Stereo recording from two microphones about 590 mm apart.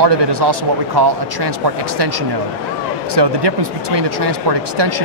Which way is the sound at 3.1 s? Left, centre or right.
Right.